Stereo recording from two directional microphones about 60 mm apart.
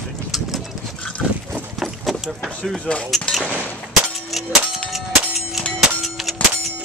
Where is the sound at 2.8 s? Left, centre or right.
Left.